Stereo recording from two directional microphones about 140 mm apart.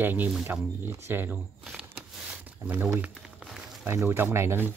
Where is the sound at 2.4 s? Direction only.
10° right (ahead or behind).